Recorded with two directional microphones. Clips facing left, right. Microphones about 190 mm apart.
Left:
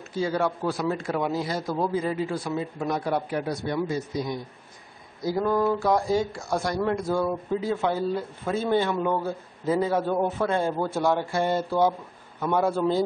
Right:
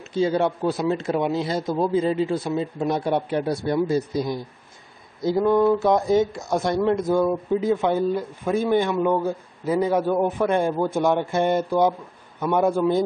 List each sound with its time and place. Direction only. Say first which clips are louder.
0.1 s a man's voice: right 5 dB; 25° right (ahead or behind)
5.2 s a man's voice: right 5 dB; 20° right (ahead or behind)